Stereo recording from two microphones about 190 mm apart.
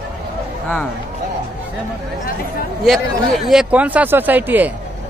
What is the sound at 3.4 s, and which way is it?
Speech, 5° right (ahead or behind).